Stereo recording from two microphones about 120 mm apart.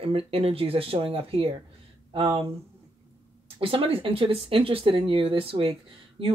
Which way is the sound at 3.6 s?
45° right (ahead or behind).